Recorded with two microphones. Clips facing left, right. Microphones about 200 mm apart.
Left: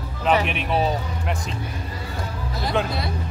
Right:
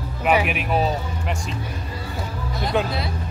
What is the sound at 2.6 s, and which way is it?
Speech, centre (ahead or behind).